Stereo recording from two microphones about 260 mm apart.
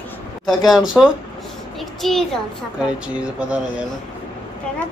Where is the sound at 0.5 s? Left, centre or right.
Centre.